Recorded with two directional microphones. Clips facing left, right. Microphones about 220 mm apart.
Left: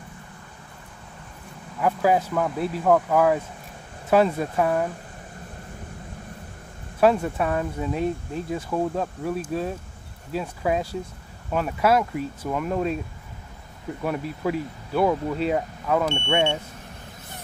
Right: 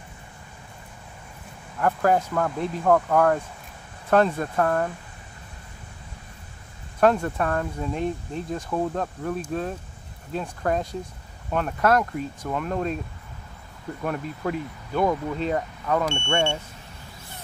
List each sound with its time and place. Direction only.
1.8 s speech: 5° left (ahead or behind)
7.0 s speech: 5° left (ahead or behind)
14.0 s speech: 5° left (ahead or behind)
16.2 s speech: 15° left (ahead or behind)